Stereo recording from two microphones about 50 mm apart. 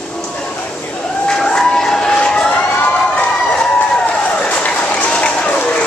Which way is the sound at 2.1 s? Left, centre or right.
Centre.